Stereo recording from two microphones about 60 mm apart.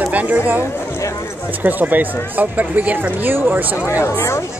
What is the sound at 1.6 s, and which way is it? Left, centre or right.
Speech, right.